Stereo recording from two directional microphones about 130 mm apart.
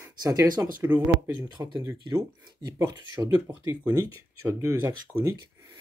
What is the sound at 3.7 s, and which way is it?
Speech, 20° right (ahead or behind).